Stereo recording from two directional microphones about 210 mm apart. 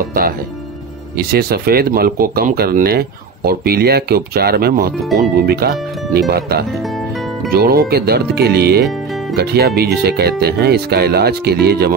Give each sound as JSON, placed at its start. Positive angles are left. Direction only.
{"t": 1.1, "sound": "speech", "side_deg": -45}